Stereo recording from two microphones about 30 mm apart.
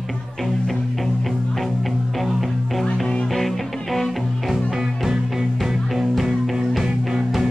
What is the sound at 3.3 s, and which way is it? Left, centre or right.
Music, centre.